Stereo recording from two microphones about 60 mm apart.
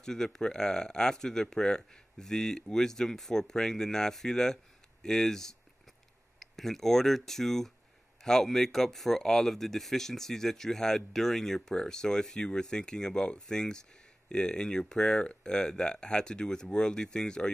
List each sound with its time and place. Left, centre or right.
0.0 s speech: centre